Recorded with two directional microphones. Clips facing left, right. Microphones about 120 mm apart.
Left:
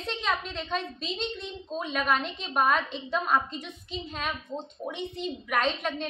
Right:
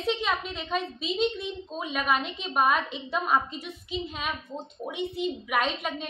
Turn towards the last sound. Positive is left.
turn(degrees=-5)  # may be behind; listen again after turning